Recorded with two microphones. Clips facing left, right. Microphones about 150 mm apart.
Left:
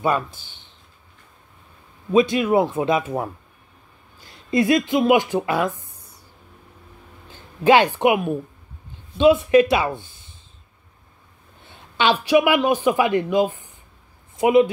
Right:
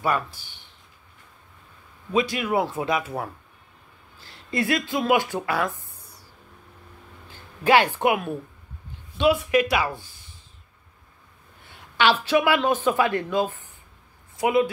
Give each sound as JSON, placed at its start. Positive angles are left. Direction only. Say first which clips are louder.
{"t": 0.0, "sound": "speech", "louder": "left 3 dB", "side_deg": 20}
{"t": 2.1, "sound": "speech", "louder": "left 6 dB", "side_deg": 25}
{"t": 7.2, "sound": "speech", "louder": "left 5 dB", "side_deg": 20}
{"t": 11.6, "sound": "speech", "louder": "left 1 dB", "side_deg": 20}